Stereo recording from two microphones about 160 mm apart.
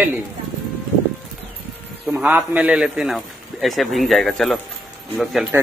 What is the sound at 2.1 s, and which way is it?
Speech, 5° right (ahead or behind).